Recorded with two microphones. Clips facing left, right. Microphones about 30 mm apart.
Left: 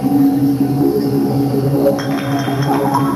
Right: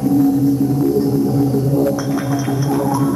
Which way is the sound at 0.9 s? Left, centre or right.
Left.